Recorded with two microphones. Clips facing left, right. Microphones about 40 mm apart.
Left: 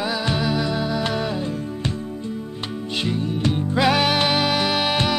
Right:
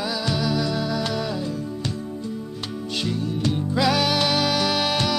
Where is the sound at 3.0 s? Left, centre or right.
Left.